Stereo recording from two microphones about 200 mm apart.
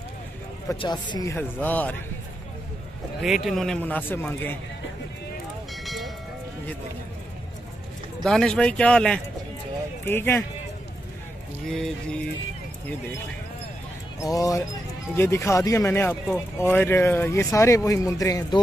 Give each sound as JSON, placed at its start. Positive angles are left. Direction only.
{"t": 0.7, "sound": "speech", "side_deg": 20}
{"t": 1.3, "sound": "speech", "side_deg": 10}
{"t": 3.2, "sound": "speech", "side_deg": 0}
{"t": 5.9, "sound": "a sound", "side_deg": 0}
{"t": 8.2, "sound": "speech", "side_deg": 0}
{"t": 11.6, "sound": "speech", "side_deg": 0}
{"t": 14.2, "sound": "speech", "side_deg": 15}